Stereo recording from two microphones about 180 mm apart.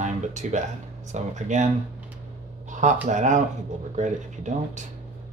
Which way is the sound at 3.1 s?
45° right (ahead or behind).